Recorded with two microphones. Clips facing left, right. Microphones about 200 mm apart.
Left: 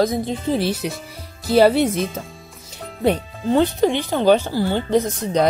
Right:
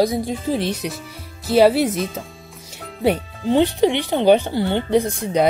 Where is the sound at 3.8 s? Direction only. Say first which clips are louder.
Right 1 dB; 20° right (ahead or behind).